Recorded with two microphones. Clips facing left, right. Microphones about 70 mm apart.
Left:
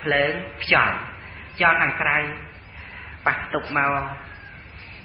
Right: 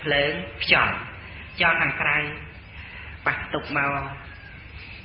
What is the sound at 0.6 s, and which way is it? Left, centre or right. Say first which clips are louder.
Speech: left 1 dB; left.